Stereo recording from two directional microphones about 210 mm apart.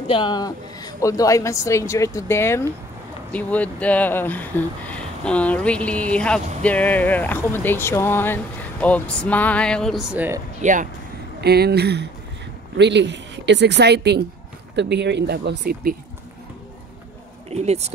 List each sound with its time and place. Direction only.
0.1 s speech: 20° left (ahead or behind); by 10.4 s 10° right (ahead or behind)
10.6 s speech: 40° right (ahead or behind)
11.4 s speech: 50° right (ahead or behind)
17.5 s speech: 30° right (ahead or behind)